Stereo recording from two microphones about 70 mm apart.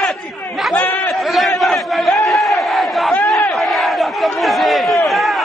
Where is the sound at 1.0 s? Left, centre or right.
Centre.